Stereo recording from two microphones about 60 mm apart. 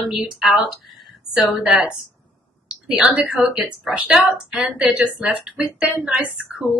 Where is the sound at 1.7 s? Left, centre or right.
Centre.